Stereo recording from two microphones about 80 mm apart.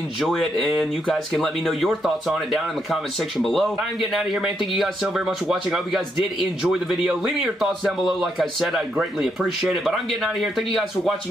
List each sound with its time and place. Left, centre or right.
0.2 s speech: centre